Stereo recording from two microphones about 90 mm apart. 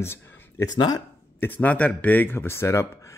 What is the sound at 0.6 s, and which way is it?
Speech, 45° left (ahead or behind).